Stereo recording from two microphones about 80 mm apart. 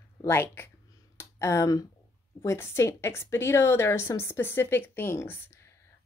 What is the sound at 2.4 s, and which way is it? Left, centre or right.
Speech, left.